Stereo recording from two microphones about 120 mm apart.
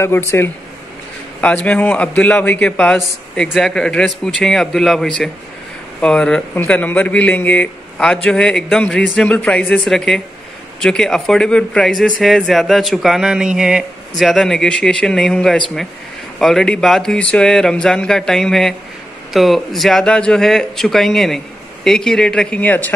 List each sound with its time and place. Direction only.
0.3 s a man's voice: 20° left (ahead or behind)